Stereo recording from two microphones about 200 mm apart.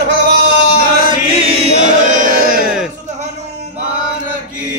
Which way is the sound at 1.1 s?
30° right (ahead or behind).